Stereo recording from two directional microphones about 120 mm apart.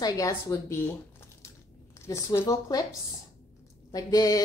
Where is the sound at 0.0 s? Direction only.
25° left (ahead or behind).